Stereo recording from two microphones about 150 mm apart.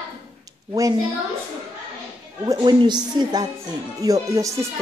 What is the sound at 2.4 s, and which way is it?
A woman's voice, 30° right (ahead or behind).